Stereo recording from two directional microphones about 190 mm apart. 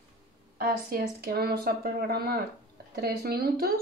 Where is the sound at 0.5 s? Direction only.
50° right (ahead or behind).